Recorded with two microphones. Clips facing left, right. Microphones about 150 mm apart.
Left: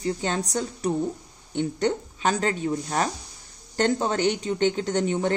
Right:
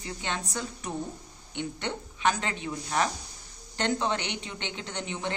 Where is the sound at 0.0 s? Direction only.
40° left (ahead or behind).